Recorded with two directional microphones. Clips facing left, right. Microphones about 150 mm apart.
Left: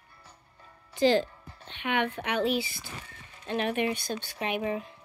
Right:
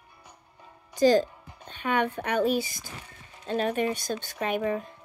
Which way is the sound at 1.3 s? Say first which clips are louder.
Right 1 dB; 15° right (ahead or behind).